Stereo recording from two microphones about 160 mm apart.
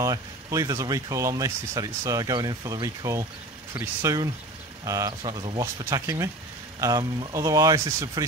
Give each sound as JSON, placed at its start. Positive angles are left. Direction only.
{"t": 0.0, "sound": "speech", "side_deg": -20}